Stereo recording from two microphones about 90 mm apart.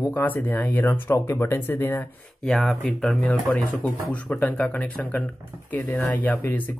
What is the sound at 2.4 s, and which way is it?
Speech, 5° left (ahead or behind).